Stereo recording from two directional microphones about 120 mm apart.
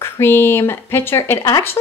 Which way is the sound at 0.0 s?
20° left (ahead or behind).